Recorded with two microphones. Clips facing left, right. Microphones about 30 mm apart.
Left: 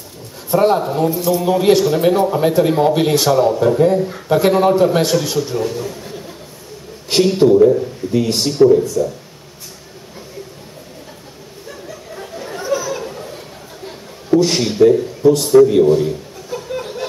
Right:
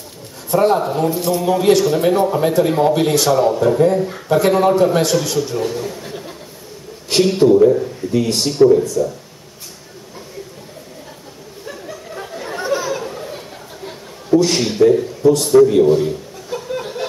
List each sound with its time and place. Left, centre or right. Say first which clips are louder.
0.5 s a man's voice: left 1 dB; centre
1.1 s a man's voice: left 1 dB; centre
1.4 s a man's voice: even; centre
5.6 s a man's voice: even; centre
7.1 s a man's voice: even; centre
12.2 s chatter: right 2 dB; right
12.6 s chatter: even; right
12.9 s a sound: right 1 dB; centre
14.3 s a man's voice: even; centre
15.8 s chuckle: even; centre